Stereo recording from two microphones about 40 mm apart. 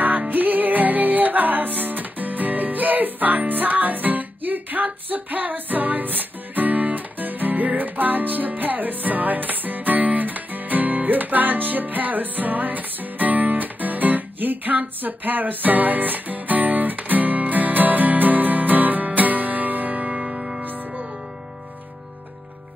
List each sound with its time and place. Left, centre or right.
0.3 s music: right
20.6 s music: right